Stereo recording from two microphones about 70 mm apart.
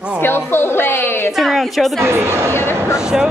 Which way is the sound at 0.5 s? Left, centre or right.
Left.